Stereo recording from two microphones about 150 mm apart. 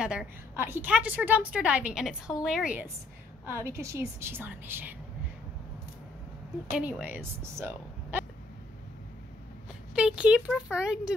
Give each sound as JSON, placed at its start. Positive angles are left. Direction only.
{"t": 0.0, "sound": "a woman's voice", "side_deg": -5}
{"t": 6.7, "sound": "a woman's voice", "side_deg": -10}
{"t": 9.9, "sound": "speech", "side_deg": -5}